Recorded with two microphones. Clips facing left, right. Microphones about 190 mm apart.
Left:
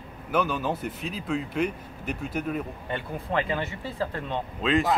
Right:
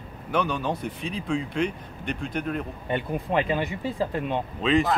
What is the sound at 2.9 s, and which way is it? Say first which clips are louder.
Speech: right 4 dB; 15° right (ahead or behind).